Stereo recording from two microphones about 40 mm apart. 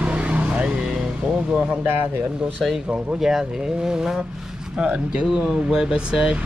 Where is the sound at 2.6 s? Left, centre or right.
Centre.